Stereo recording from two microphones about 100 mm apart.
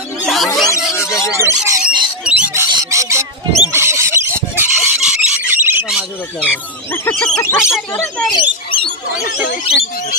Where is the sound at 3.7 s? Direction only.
25° right (ahead or behind).